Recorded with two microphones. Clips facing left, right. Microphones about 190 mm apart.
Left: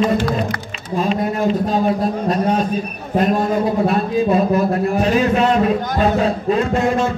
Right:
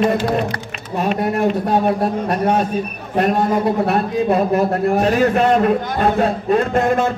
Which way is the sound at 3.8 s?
65° right (ahead or behind).